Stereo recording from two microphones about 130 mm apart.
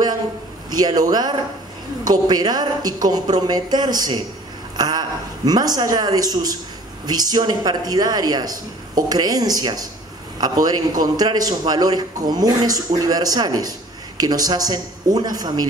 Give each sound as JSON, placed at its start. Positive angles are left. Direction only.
{"t": 0.7, "sound": "a man's voice", "side_deg": -30}